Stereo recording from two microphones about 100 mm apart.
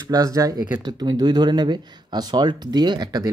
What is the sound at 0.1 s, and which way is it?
Speech, 35° right (ahead or behind).